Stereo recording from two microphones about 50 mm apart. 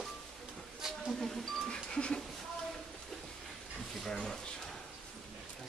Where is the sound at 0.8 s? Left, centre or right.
Centre.